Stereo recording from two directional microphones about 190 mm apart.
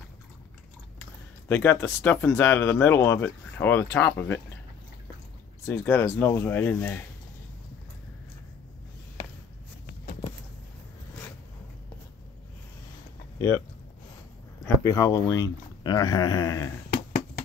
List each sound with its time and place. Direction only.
1.5 s speech: 10° left (ahead or behind)
5.7 s speech: 10° left (ahead or behind)
13.4 s speech: 10° left (ahead or behind)
14.8 s speech: 15° left (ahead or behind)